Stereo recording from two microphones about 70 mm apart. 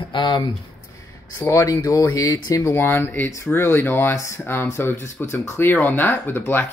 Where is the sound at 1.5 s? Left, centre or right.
Left.